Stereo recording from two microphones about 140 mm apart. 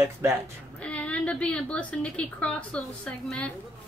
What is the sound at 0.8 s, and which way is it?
A woman's voice, 10° left (ahead or behind).